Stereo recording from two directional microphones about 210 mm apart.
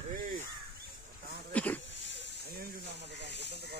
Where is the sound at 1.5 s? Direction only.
5° left (ahead or behind).